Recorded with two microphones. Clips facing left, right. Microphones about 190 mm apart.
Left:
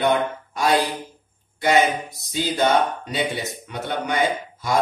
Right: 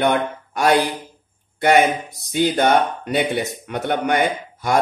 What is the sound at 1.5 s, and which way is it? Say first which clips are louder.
A man's voice: right 3 dB; 60° right (ahead or behind).